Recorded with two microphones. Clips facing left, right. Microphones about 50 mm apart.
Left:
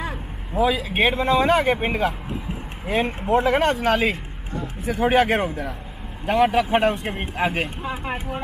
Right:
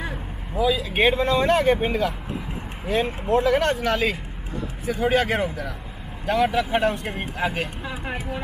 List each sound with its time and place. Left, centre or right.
0.6 s speech: left
0.9 s speech: centre
1.8 s a man's voice: left
3.1 s speech: centre
3.8 s a man's voice: left